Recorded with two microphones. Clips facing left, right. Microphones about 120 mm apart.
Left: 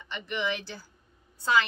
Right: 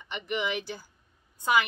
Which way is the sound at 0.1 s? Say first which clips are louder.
Right 1 dB; 15° right (ahead or behind).